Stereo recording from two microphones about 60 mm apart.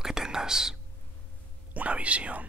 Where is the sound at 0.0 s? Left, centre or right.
Centre.